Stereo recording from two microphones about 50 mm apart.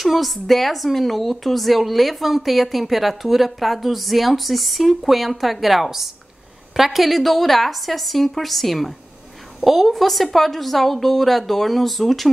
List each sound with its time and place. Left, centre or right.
0.0 s speech: centre